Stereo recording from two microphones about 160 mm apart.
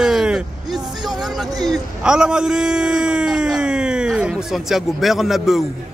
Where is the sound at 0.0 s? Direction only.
5° right (ahead or behind).